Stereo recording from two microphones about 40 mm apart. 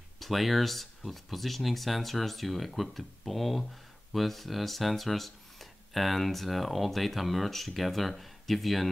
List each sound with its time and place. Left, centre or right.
0.2 s speech: centre